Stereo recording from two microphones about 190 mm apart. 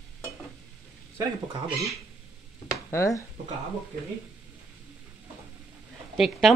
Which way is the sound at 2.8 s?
15° left (ahead or behind).